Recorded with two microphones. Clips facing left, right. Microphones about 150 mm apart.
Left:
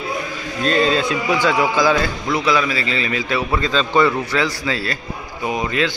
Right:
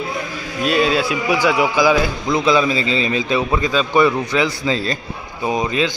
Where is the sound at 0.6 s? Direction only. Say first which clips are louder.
Even; 10° right (ahead or behind).